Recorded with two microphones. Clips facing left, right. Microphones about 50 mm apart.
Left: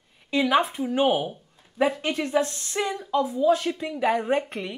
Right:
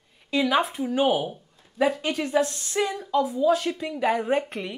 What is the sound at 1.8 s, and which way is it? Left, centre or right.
Speech, centre.